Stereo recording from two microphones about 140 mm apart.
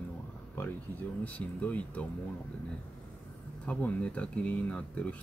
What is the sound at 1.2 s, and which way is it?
Speech, 10° left (ahead or behind).